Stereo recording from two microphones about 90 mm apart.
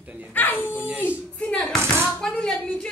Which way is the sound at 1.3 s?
10° left (ahead or behind).